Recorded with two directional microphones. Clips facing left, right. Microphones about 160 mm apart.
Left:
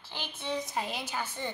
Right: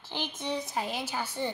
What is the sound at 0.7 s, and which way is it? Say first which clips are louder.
Speech: right 2 dB; centre (ahead or behind).